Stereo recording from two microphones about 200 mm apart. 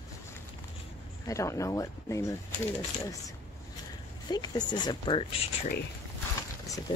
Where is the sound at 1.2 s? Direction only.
15° left (ahead or behind).